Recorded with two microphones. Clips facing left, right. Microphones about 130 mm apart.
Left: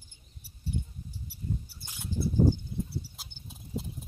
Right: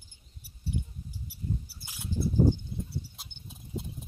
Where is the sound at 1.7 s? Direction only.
10° right (ahead or behind).